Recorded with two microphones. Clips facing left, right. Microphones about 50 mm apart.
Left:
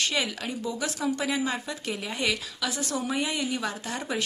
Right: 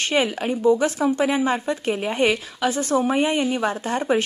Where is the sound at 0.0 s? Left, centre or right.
Right.